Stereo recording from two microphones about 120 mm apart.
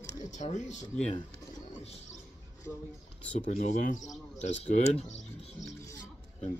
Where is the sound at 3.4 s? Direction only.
85° left.